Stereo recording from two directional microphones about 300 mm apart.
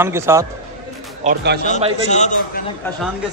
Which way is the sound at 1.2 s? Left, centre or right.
Right.